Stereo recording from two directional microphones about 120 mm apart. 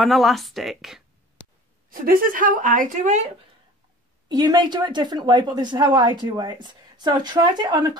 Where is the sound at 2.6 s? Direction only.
90° right.